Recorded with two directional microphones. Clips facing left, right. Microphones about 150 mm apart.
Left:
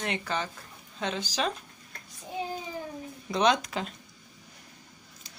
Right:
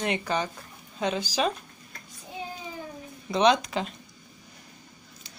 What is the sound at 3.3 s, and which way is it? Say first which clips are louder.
Speech: right 3 dB; centre (ahead or behind).